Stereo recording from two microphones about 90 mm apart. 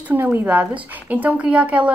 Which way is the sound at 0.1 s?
25° right (ahead or behind).